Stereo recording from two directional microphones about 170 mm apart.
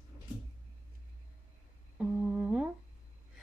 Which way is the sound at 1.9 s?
5° right (ahead or behind).